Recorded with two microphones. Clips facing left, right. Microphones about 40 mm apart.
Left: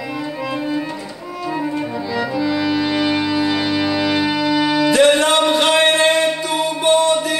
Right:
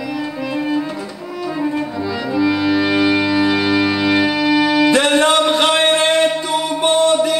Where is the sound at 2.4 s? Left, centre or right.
Centre.